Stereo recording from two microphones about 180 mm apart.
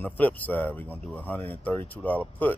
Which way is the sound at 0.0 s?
10° left (ahead or behind).